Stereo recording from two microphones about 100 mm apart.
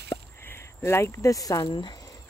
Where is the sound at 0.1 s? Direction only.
25° left (ahead or behind).